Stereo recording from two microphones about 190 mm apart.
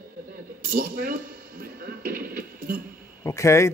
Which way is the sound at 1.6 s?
50° right (ahead or behind).